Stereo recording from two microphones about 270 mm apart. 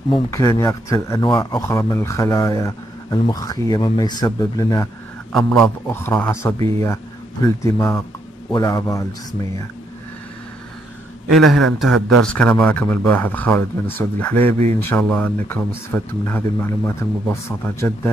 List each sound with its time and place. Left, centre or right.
0.1 s a man's voice: centre
5.3 s a man's voice: centre
11.3 s a man's voice: centre